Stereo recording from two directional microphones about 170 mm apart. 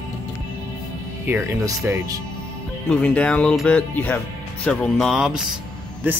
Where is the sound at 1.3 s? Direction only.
15° right (ahead or behind).